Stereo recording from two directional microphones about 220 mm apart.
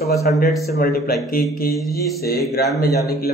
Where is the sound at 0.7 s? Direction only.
45° left (ahead or behind).